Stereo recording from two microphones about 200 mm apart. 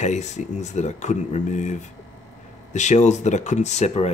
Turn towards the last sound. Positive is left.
turn(degrees=35)  # may be behind; listen again after turning